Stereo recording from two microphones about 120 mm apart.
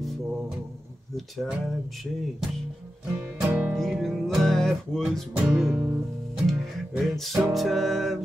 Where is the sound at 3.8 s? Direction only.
Centre (ahead or behind).